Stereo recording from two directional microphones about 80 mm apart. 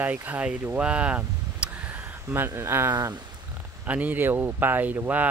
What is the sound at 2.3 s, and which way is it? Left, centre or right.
Speech, right.